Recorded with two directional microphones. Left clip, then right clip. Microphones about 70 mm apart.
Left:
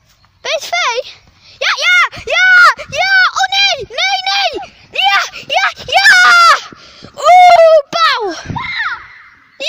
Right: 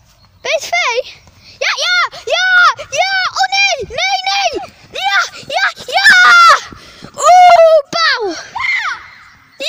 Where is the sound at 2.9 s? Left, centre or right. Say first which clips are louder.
Left 4 dB; centre.